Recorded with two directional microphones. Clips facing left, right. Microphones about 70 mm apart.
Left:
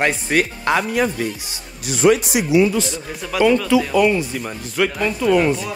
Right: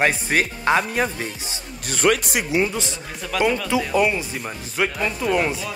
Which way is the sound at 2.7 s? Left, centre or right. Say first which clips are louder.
Left 6 dB; right.